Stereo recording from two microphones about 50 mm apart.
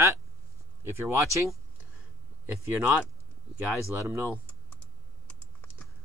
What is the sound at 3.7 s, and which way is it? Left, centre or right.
Speech, right.